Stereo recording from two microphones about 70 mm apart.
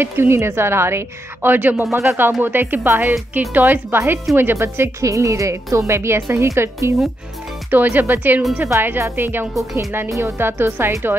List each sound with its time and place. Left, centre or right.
0.0 s a woman's voice: right
1.8 s a woman's voice: right
2.4 s a woman's voice: right
3.3 s a woman's voice: right
5.0 s a woman's voice: right
7.7 s a woman's voice: right
10.0 s a woman's voice: right